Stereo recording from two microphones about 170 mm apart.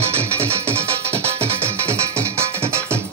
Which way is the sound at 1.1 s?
10° left (ahead or behind).